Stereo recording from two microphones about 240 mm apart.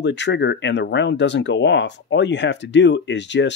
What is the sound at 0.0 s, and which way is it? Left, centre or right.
Speech, left.